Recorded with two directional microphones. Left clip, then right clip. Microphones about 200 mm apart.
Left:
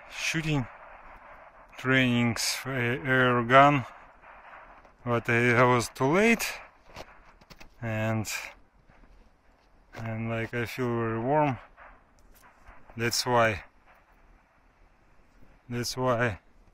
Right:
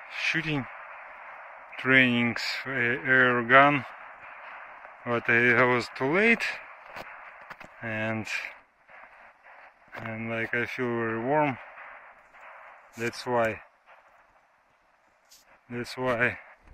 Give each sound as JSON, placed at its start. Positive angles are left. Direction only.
{"t": 0.0, "sound": "a sound", "side_deg": 15}
{"t": 1.7, "sound": "speech", "side_deg": 0}
{"t": 5.0, "sound": "speech", "side_deg": 10}
{"t": 7.0, "sound": "a sound", "side_deg": 10}
{"t": 9.9, "sound": "speech", "side_deg": 10}
{"t": 12.9, "sound": "speech", "side_deg": 10}
{"t": 15.7, "sound": "speech", "side_deg": 15}